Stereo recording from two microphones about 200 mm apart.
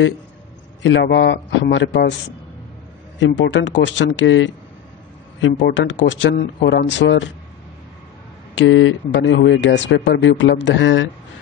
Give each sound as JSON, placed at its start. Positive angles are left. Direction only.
{"t": 0.8, "sound": "speech", "side_deg": 60}
{"t": 3.2, "sound": "speech", "side_deg": 65}
{"t": 5.5, "sound": "speech", "side_deg": 55}
{"t": 8.5, "sound": "speech", "side_deg": 70}